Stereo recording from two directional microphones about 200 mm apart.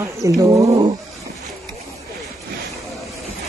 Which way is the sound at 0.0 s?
15° right (ahead or behind).